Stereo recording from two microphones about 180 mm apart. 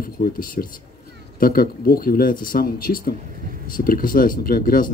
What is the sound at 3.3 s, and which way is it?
Speech, 50° right (ahead or behind).